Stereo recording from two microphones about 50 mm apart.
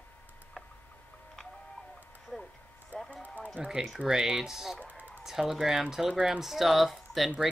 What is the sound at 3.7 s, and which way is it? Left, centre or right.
Speech, centre.